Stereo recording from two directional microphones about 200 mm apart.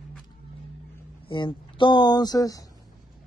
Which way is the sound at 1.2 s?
25° left (ahead or behind).